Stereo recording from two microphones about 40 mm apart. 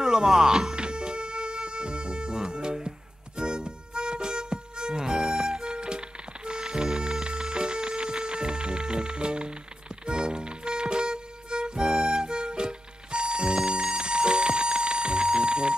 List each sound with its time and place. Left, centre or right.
0.0 s speech: centre
0.7 s music: right
5.6 s music: right
13.7 s alarm: centre